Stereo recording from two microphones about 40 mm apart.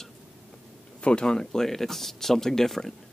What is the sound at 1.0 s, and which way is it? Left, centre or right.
Speech, left.